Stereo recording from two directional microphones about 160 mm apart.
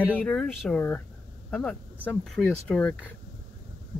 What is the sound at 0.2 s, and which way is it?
Speech, 5° left (ahead or behind).